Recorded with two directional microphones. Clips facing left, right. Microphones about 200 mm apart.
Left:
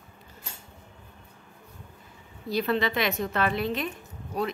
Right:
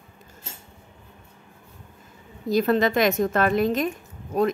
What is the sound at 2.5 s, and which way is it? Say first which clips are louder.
Speech: right 6 dB; 45° right (ahead or behind).